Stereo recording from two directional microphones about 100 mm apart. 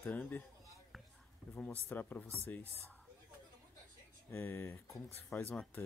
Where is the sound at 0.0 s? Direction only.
15° left (ahead or behind).